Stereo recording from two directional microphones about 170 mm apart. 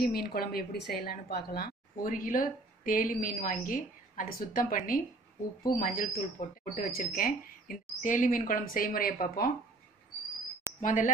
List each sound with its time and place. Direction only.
0.0 s a woman's voice: 65° left (ahead or behind)
10.8 s speech: 50° left (ahead or behind)